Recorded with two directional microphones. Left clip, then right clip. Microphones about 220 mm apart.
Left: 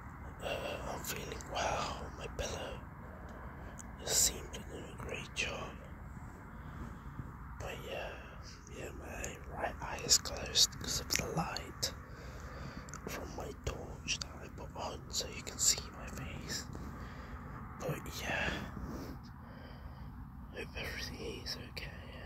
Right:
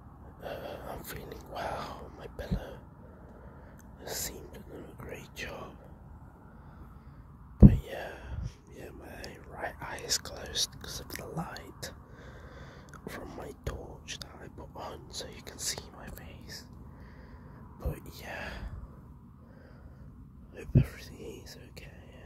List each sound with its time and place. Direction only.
0.4 s gasp: 15° right (ahead or behind)
1.5 s whispering: 20° right (ahead or behind)
4.0 s whispering: 15° right (ahead or behind)
7.6 s a sound: 25° right (ahead or behind)
8.7 s whispering: 15° right (ahead or behind)
13.0 s a sound: 25° right (ahead or behind)
13.4 s whispering: 20° right (ahead or behind)
17.7 s whispering: 10° right (ahead or behind)
20.5 s whispering: 15° right (ahead or behind)